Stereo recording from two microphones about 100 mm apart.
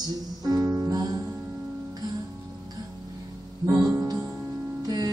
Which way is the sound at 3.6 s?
30° right (ahead or behind).